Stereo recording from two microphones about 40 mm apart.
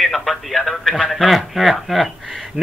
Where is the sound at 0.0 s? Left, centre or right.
Centre.